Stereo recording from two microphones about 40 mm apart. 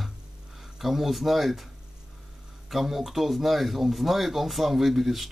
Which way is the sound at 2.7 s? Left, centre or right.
Centre.